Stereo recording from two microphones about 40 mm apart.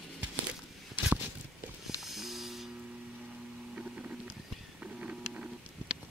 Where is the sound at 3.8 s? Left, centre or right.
Right.